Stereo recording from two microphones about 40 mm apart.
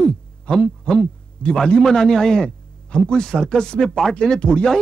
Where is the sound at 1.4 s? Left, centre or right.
Left.